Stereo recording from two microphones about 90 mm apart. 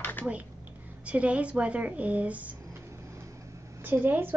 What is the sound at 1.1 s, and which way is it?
A woman's voice, 15° right (ahead or behind).